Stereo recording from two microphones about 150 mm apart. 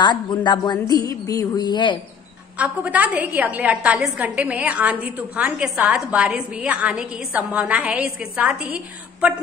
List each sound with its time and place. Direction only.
0.0 s speech: 30° left (ahead or behind)
2.5 s a woman's voice: 10° right (ahead or behind)